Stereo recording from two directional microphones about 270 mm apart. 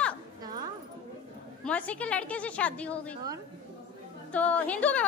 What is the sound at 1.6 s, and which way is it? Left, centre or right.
A child's voice, centre.